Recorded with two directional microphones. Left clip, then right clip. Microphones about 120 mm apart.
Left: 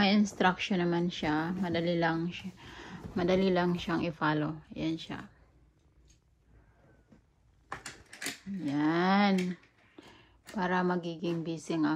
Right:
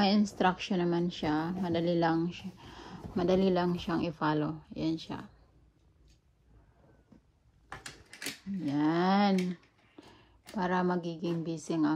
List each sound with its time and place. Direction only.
0.0 s a woman's voice: 15° right (ahead or behind)
8.5 s a woman's voice: 5° right (ahead or behind)